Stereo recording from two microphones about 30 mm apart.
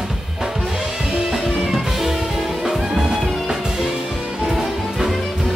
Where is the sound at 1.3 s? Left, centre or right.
Centre.